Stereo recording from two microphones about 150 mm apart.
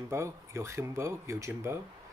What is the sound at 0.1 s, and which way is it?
Speech, 20° right (ahead or behind).